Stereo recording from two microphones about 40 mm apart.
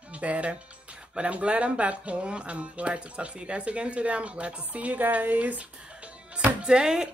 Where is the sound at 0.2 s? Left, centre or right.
Right.